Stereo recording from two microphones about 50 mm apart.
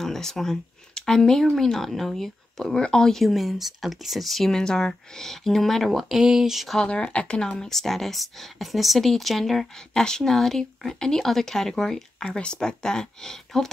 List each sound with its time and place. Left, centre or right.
0.0 s speech: centre
3.3 s speech: centre
6.1 s speech: centre
6.8 s speech: centre
7.5 s speech: centre